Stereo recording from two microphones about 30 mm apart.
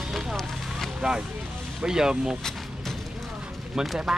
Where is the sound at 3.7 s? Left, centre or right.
Right.